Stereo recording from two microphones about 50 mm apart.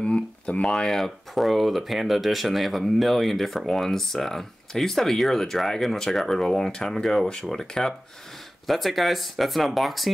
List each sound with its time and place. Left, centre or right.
0.0 s speech: left; by 10.1 s centre